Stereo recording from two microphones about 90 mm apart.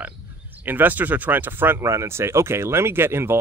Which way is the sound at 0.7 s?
20° right (ahead or behind).